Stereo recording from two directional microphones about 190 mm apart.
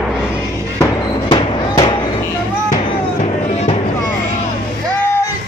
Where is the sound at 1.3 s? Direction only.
25° left (ahead or behind).